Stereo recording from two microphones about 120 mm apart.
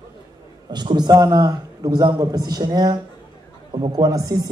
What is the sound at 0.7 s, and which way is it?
A man's voice, 35° right (ahead or behind).